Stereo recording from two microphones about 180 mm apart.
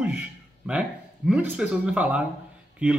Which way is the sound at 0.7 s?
5° right (ahead or behind).